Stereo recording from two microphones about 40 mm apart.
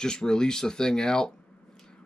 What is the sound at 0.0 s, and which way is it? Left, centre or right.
Speech, centre.